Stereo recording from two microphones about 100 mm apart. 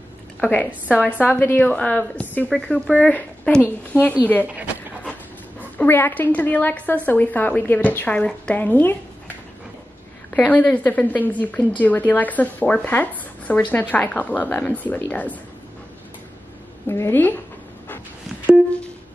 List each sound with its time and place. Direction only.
0.4 s a woman's voice: 15° left (ahead or behind)
0.7 s a woman's voice: 15° right (ahead or behind)
1.2 s a woman's voice: 20° left (ahead or behind)
5.8 s a woman's voice: 20° left (ahead or behind)
10.3 s a woman's voice: 10° left (ahead or behind)
16.8 s speech: 25° left (ahead or behind)
18.5 s music: 10° right (ahead or behind)